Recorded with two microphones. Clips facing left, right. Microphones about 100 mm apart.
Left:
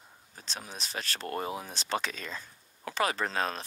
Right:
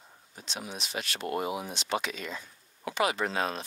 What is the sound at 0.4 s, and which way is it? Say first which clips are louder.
Speech: right 3 dB; 40° left (ahead or behind).